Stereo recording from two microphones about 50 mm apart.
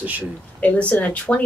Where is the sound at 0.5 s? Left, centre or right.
Left.